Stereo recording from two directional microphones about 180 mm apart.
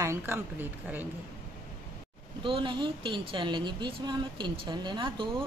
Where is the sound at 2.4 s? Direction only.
25° right (ahead or behind).